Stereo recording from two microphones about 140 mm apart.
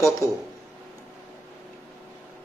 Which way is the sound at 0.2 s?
20° right (ahead or behind).